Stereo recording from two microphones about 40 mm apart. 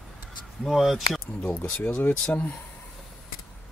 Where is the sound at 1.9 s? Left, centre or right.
Left.